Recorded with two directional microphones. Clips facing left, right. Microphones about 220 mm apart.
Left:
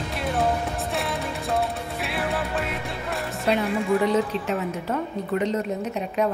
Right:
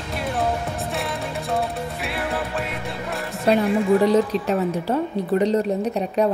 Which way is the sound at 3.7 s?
35° right (ahead or behind).